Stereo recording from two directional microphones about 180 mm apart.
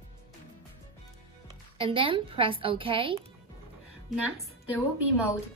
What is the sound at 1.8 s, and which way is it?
Speech, 30° right (ahead or behind).